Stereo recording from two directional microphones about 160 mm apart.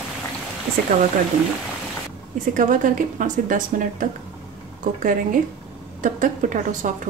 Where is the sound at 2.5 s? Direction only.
55° right (ahead or behind).